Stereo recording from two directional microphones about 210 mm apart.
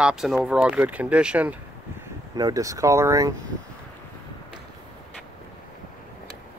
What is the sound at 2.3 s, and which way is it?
Speech, 15° right (ahead or behind).